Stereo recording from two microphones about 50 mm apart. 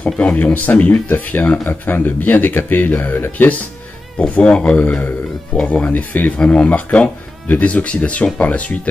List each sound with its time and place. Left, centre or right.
0.0 s speech: left
0.4 s speech: left
1.4 s speech: left
1.7 s speech: left
4.2 s speech: left